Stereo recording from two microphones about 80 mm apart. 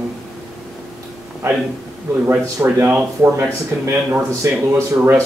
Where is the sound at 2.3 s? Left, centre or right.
Right.